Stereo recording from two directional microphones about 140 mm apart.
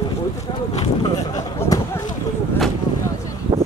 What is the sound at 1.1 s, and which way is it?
Speech, 25° left (ahead or behind).